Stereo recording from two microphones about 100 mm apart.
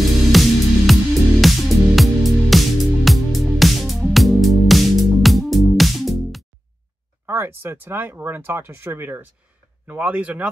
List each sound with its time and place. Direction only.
0.0 s music: centre (ahead or behind)
7.2 s speech: 20° right (ahead or behind)